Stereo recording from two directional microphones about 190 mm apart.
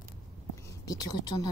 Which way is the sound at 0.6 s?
20° left (ahead or behind).